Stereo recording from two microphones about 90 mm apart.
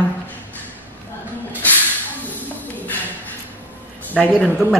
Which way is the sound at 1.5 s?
20° left (ahead or behind).